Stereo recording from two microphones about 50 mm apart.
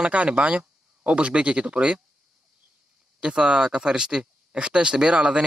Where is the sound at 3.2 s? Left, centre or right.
Centre.